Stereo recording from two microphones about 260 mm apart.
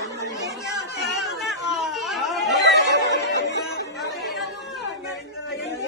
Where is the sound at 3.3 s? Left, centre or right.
Left.